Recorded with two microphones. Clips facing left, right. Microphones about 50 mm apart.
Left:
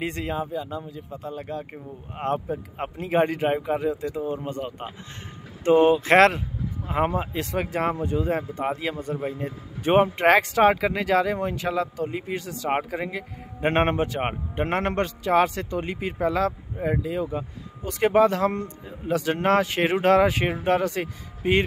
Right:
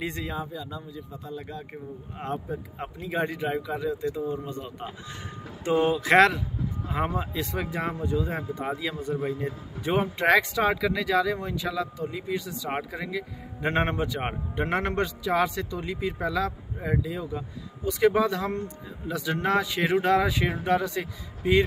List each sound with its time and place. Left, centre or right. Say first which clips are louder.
0.0 s speech: left 4 dB; left
0.7 s speech: left 4 dB; left
5.7 s speech: left 5 dB; left
6.9 s speech: left 5 dB; left
7.7 s speech: left 4 dB; left
10.1 s speech: left 3 dB; left
14.2 s speech: left 3 dB; left